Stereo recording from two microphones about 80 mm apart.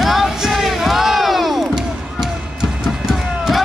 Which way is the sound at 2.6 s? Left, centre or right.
Centre.